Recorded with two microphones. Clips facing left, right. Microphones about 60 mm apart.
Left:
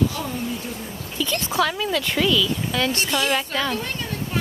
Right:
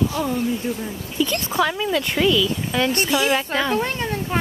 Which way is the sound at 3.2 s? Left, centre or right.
Centre.